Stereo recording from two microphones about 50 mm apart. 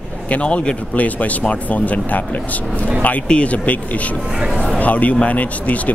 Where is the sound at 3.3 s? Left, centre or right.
Left.